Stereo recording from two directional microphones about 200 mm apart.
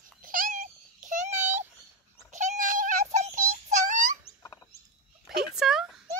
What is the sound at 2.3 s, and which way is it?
Synthetic singing, 35° right (ahead or behind).